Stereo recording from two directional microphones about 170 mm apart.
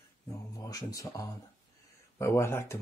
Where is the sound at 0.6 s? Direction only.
20° left (ahead or behind).